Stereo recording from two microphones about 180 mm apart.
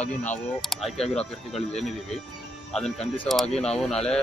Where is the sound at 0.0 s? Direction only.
10° left (ahead or behind).